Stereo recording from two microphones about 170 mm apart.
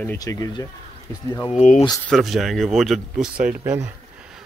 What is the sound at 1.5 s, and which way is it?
Speech, 45° left (ahead or behind).